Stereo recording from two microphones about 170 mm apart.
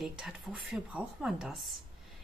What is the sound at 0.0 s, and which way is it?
Speech, 5° right (ahead or behind).